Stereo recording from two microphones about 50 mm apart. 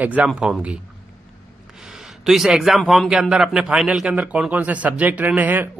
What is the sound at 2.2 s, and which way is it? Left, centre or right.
A man's voice, centre.